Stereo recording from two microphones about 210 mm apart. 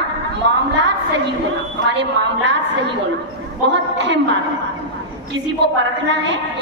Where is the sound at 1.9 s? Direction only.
60° right (ahead or behind).